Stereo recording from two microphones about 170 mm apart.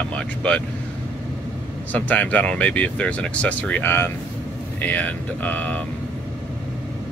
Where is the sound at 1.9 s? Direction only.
10° left (ahead or behind).